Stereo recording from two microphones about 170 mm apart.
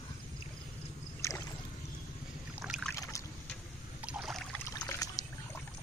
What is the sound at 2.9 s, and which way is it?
Boat, 20° left (ahead or behind).